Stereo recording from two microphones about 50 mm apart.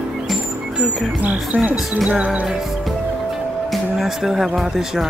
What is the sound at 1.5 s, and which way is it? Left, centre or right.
Cricket, right.